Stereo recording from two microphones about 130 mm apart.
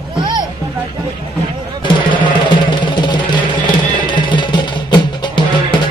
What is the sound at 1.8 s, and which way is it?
Music, 40° left (ahead or behind).